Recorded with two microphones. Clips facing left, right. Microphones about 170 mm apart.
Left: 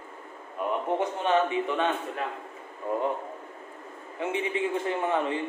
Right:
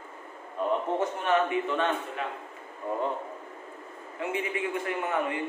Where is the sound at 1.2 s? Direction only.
20° left (ahead or behind).